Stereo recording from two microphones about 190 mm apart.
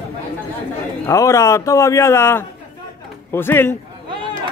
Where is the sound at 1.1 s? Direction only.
15° left (ahead or behind).